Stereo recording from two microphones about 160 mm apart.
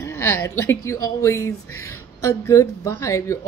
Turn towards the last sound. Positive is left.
turn(degrees=20)  # may be behind; listen again after turning